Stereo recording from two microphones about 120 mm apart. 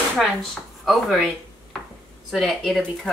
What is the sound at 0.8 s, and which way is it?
Speech, centre (ahead or behind).